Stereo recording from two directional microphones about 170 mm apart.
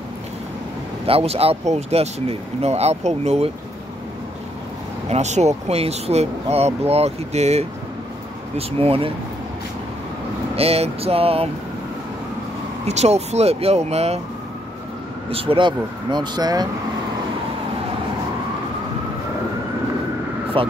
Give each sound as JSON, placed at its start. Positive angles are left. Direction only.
{"t": 1.0, "sound": "speech", "side_deg": -35}
{"t": 5.1, "sound": "speech", "side_deg": -40}
{"t": 10.5, "sound": "speech", "side_deg": -35}
{"t": 12.8, "sound": "speech", "side_deg": -40}
{"t": 15.2, "sound": "speech", "side_deg": -30}
{"t": 20.5, "sound": "speech", "side_deg": -30}